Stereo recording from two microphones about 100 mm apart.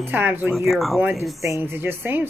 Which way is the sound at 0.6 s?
Centre (ahead or behind).